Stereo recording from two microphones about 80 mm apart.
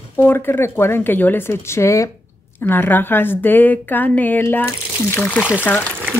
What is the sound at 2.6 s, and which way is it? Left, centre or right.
Speech, left.